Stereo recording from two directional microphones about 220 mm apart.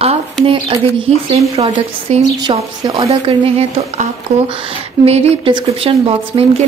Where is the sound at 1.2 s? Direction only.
25° right (ahead or behind).